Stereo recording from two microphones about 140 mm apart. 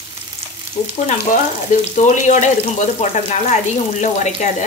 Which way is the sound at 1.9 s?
60° left (ahead or behind).